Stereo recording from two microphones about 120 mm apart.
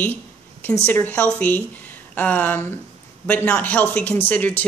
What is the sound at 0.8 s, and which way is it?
Speech, 15° left (ahead or behind).